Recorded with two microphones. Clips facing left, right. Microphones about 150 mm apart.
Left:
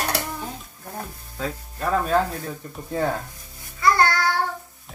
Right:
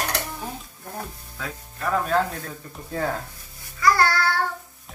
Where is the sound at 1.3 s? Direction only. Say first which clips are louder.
Left 6 dB; 30° left (ahead or behind).